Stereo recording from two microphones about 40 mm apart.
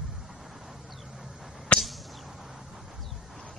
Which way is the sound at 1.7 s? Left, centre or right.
Left.